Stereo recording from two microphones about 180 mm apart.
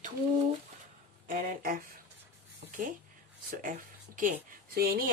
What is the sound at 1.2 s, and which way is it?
Speech, 50° right (ahead or behind).